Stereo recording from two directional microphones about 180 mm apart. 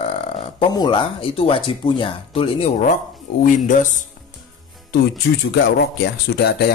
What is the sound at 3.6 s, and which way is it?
Speech, 45° left (ahead or behind).